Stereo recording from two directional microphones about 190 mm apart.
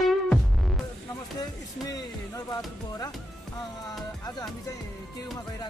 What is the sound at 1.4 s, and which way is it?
Music, 20° left (ahead or behind).